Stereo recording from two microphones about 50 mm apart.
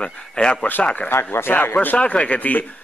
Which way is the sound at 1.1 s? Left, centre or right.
Left.